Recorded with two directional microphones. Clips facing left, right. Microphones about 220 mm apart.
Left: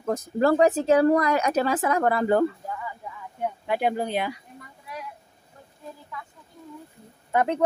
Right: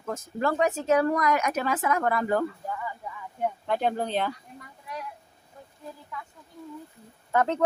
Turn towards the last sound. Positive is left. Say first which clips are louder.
# left 1 dB
turn(degrees=15)  # may be behind; listen again after turning